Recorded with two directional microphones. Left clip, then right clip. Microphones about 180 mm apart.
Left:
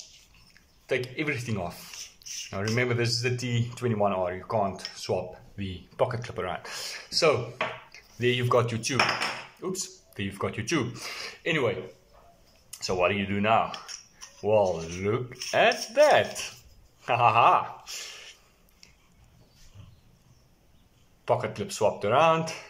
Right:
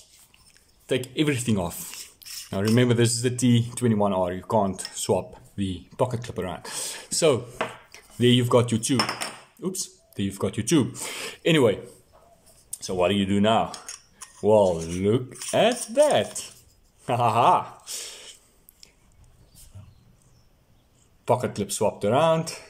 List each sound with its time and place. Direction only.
0.8 s speech: 40° right (ahead or behind)
10.1 s speech: 30° right (ahead or behind); by 11.7 s 55° right (ahead or behind)
12.7 s speech: 35° right (ahead or behind)
14.4 s speech: 50° right (ahead or behind)
15.0 s speech: 35° right (ahead or behind)
21.3 s speech: 30° right (ahead or behind)